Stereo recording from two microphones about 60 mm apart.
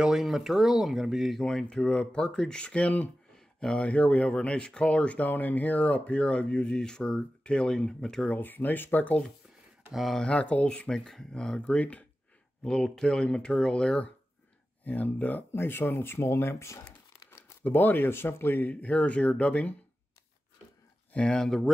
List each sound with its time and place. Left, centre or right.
0.0 s speech: centre
1.4 s speech: centre
8.3 s speech: left
9.9 s speech: centre
10.2 s speech: centre
10.9 s speech: centre
12.6 s speech: centre
14.9 s speech: left
17.6 s speech: left
18.7 s speech: left
21.1 s speech: centre